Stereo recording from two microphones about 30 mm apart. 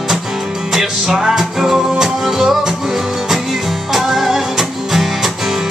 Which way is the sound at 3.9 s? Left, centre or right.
Centre.